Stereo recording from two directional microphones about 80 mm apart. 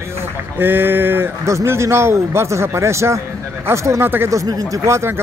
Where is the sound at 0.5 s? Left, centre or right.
Right.